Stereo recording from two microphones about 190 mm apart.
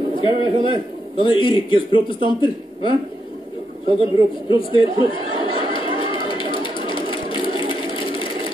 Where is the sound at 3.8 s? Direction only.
30° right (ahead or behind).